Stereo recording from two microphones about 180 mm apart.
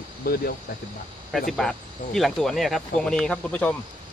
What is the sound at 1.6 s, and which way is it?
Speech, centre (ahead or behind).